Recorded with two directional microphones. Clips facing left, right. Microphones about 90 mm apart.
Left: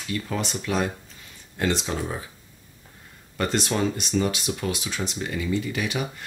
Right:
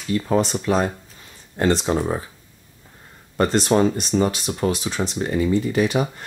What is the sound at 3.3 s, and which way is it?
Speech, 35° right (ahead or behind).